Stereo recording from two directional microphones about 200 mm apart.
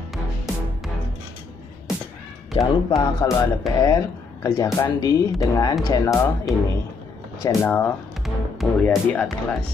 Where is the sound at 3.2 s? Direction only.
20° left (ahead or behind).